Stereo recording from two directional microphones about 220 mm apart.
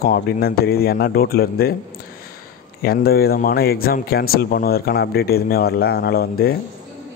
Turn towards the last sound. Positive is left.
turn(degrees=45)  # may be behind; listen again after turning